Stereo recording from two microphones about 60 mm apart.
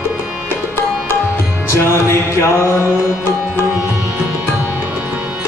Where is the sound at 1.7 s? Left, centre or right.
Left.